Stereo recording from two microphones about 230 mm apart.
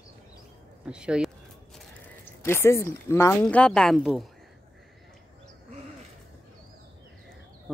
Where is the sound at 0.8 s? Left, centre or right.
Centre.